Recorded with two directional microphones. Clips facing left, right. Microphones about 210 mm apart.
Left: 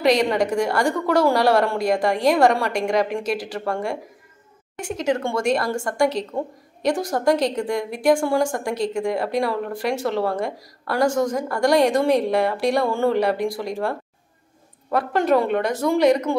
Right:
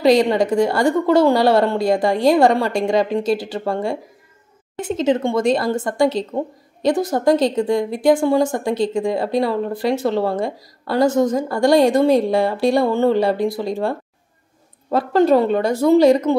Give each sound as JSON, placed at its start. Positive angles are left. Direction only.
{"t": 0.0, "sound": "speech", "side_deg": -25}